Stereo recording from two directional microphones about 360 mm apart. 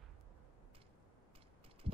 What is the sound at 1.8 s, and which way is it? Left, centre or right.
Heart sounds, centre.